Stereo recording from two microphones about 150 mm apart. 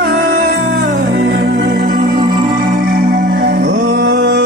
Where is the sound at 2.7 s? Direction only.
75° right (ahead or behind).